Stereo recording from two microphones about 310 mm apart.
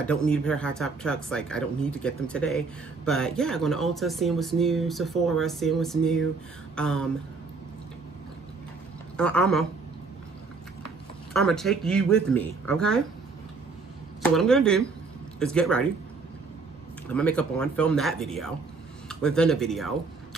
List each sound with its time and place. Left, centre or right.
0.0 s speech: centre
6.7 s a sound: centre
9.1 s speech: centre
11.3 s speech: centre
14.2 s speech: centre
17.1 s speech: centre